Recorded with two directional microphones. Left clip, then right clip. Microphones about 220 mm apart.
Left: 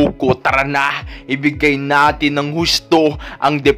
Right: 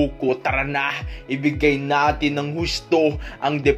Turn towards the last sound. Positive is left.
turn(degrees=30)  # may be behind; listen again after turning